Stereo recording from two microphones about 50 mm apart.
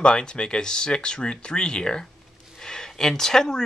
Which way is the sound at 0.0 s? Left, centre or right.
Centre.